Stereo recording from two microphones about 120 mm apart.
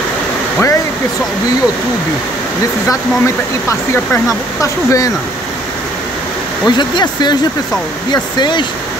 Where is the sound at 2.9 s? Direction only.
25° left (ahead or behind).